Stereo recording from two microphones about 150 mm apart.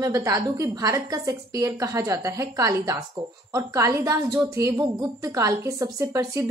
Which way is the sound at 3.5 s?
20° right (ahead or behind).